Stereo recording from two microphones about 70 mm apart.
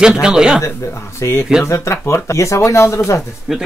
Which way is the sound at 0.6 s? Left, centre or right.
Left.